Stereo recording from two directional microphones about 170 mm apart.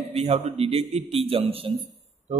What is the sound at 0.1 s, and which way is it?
A man's voice, 40° right (ahead or behind).